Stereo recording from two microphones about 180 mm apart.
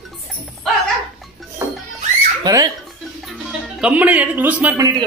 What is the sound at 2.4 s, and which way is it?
Speech, 20° right (ahead or behind).